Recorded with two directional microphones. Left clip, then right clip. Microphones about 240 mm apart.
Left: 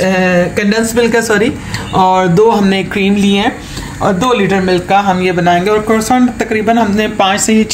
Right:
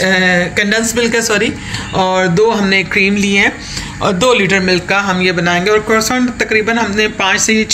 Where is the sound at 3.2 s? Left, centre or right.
Centre.